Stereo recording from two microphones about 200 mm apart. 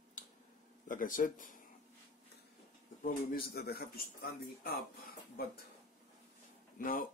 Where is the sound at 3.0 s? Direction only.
50° left (ahead or behind).